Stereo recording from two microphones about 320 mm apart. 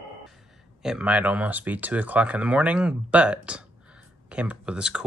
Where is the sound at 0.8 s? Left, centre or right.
Centre.